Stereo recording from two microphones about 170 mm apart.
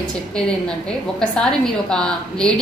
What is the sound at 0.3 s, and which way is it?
A woman's voice, 5° left (ahead or behind).